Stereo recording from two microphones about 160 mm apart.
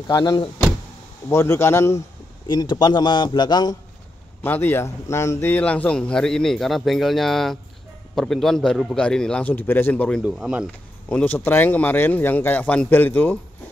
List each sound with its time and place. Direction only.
0.1 s a man's voice: 25° left (ahead or behind)
2.4 s a man's voice: 30° left (ahead or behind)
4.4 s a man's voice: 15° left (ahead or behind)
10.2 s a man's voice: 5° right (ahead or behind)
11.1 s a man's voice: 10° left (ahead or behind)